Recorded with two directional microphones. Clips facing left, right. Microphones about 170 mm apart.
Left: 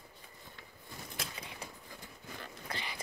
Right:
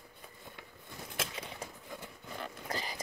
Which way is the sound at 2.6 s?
40° right (ahead or behind).